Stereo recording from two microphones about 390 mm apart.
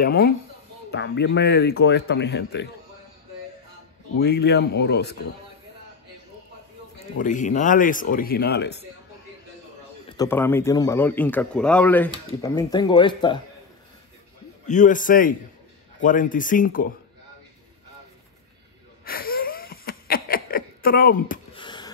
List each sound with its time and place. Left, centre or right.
0.0 s speech: left
4.2 s speech: left
7.2 s speech: centre
10.0 s speech: centre
14.7 s speech: centre
19.0 s wheeze: left